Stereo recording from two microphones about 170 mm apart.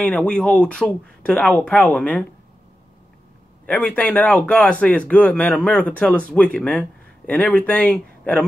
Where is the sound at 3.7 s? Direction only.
10° left (ahead or behind).